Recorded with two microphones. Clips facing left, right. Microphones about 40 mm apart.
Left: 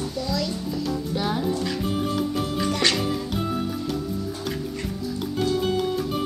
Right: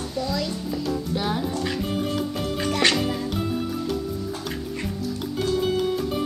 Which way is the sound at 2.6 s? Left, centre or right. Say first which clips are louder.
Right 2 dB; centre.